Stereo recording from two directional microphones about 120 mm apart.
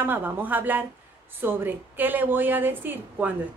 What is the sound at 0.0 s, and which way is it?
A woman's voice, 15° right (ahead or behind).